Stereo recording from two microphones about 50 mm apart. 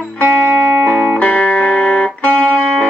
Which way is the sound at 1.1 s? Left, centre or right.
Left.